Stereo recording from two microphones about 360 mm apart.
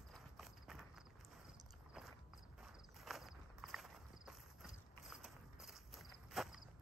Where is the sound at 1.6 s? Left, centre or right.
Centre.